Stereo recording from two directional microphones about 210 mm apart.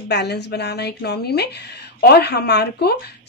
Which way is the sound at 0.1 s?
50° left (ahead or behind).